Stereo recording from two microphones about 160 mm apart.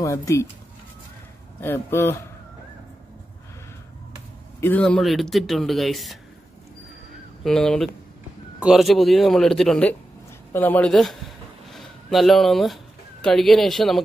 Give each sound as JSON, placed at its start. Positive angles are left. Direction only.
{"t": 0.0, "sound": "speech", "side_deg": 20}
{"t": 1.6, "sound": "speech", "side_deg": 15}
{"t": 4.6, "sound": "speech", "side_deg": 10}
{"t": 7.4, "sound": "speech", "side_deg": 5}